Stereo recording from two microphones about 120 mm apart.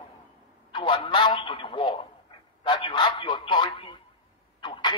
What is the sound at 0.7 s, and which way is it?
A man's voice, 45° left (ahead or behind).